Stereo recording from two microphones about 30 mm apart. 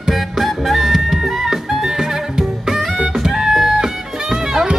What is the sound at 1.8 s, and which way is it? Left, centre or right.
Music, centre.